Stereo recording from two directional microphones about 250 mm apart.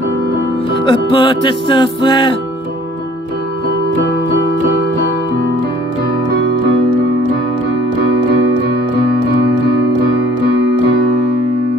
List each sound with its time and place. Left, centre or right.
0.8 s music: centre